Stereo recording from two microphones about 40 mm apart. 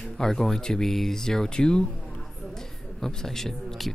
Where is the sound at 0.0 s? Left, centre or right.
Centre.